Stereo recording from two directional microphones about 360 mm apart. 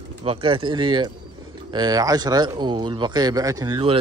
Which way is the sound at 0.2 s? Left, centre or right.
Centre.